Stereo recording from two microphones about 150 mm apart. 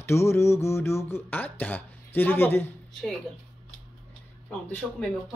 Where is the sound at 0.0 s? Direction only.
15° left (ahead or behind).